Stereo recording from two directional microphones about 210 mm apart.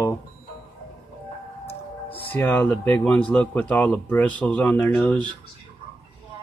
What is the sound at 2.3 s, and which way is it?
Speech, 10° left (ahead or behind).